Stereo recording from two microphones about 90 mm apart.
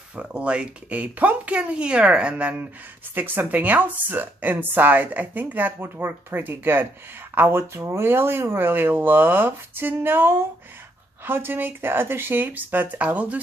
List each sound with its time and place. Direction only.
0.1 s a woman's voice: 15° right (ahead or behind)